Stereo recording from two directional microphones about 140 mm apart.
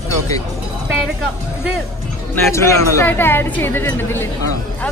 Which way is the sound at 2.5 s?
15° left (ahead or behind).